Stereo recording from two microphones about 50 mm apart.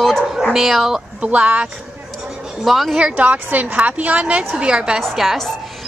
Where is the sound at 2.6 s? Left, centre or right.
Centre.